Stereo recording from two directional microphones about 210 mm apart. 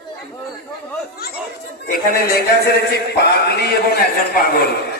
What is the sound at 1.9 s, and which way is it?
A man's voice, 45° left (ahead or behind).